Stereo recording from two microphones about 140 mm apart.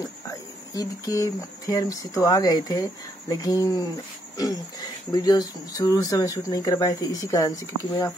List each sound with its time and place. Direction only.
0.7 s speech: 25° left (ahead or behind)